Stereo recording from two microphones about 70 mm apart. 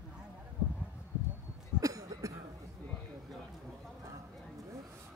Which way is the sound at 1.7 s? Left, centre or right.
Right.